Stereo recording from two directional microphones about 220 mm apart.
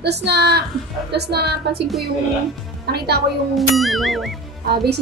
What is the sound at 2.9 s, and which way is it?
Speech, 45° right (ahead or behind).